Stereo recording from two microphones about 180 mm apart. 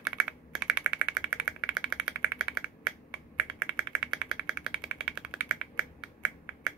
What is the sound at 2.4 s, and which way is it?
Computer keyboard, 5° right (ahead or behind).